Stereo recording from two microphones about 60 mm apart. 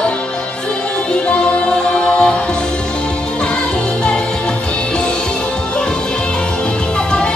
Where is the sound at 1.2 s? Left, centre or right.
Centre.